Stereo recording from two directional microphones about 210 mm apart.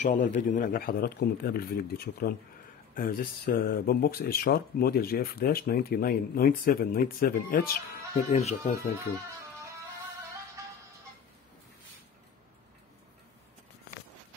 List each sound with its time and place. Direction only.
0.0 s speech: 35° left (ahead or behind)
8.3 s speech: 30° left (ahead or behind)